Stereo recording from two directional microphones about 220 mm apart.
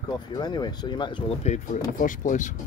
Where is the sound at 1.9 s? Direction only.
35° left (ahead or behind).